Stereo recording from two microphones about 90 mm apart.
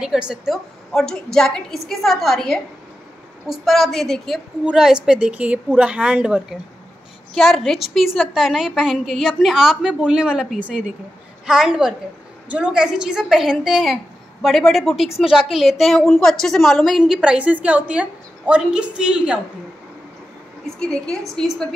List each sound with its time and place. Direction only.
0.0 s a woman's voice: 10° right (ahead or behind)
0.9 s a woman's voice: 5° left (ahead or behind)
4.6 s a woman's voice: 10° right (ahead or behind)
20.6 s a woman's voice: 10° left (ahead or behind)